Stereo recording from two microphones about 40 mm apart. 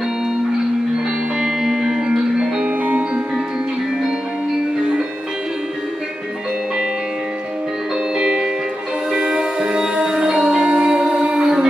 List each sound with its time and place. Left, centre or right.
1.4 s music: centre
2.6 s music: right
8.2 s music: centre